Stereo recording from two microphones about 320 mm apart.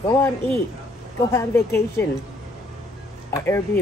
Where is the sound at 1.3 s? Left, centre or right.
Centre.